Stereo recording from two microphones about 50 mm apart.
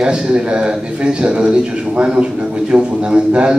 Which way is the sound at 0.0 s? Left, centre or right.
Right.